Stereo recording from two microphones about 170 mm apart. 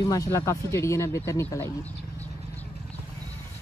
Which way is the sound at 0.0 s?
20° left (ahead or behind).